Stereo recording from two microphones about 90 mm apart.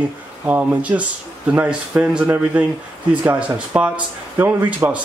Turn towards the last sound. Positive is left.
turn(degrees=-20)  # may be behind; listen again after turning